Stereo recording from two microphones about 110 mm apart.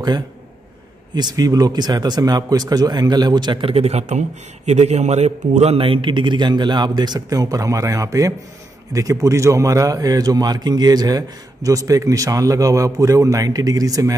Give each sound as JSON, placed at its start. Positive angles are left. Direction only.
{"t": 1.1, "sound": "speech", "side_deg": -40}
{"t": 3.7, "sound": "a man's voice", "side_deg": -75}
{"t": 5.8, "sound": "speech", "side_deg": -55}